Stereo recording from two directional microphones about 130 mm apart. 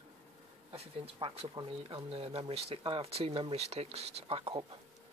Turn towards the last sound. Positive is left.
turn(degrees=-50)  # may be behind; listen again after turning